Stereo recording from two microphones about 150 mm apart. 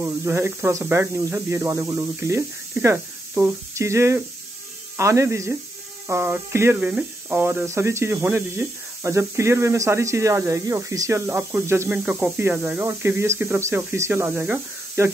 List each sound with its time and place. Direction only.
0.0 s speech: 15° right (ahead or behind)